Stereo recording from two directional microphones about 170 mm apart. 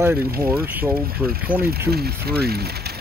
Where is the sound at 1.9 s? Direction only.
65° right (ahead or behind).